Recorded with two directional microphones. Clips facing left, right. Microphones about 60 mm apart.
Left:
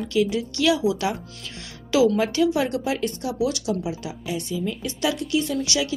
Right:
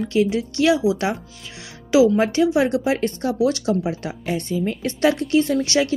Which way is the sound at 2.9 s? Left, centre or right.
Right.